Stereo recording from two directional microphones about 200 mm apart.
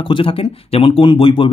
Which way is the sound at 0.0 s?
25° left (ahead or behind).